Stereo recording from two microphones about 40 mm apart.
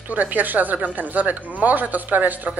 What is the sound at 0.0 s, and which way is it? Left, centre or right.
Speech, right.